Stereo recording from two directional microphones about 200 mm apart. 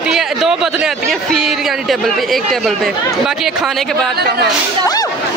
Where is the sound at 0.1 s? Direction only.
Centre (ahead or behind).